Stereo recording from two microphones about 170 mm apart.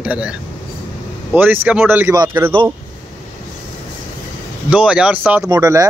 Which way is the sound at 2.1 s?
20° right (ahead or behind).